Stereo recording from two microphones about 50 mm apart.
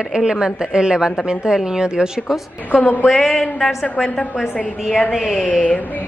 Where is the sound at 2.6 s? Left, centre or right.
Left.